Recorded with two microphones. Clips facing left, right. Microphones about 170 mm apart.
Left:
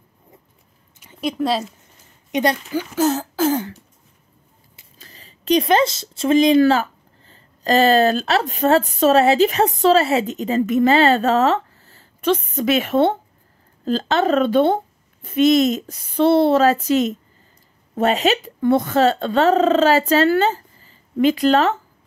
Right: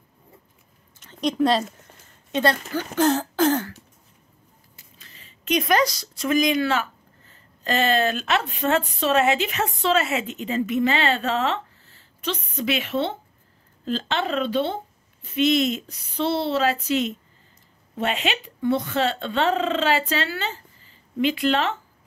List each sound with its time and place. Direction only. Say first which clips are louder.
0.9 s speech: even; 5° left (ahead or behind)
2.3 s speech: left 3 dB; 15° left (ahead or behind)
4.9 s speech: left 6 dB; 35° left (ahead or behind)
13.8 s speech: left 7 dB; 40° left (ahead or behind)